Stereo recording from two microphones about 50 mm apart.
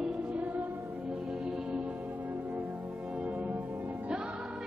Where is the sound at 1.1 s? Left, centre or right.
Centre.